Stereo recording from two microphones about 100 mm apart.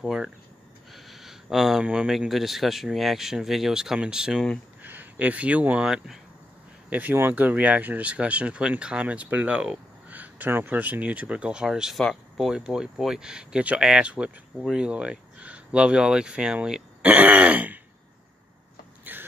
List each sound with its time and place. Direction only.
0.0 s speech: 5° right (ahead or behind)
0.9 s a sound: centre (ahead or behind)
1.9 s speech: 5° right (ahead or behind)
4.8 s speech: 20° right (ahead or behind)
19.1 s throat clearing: 20° right (ahead or behind)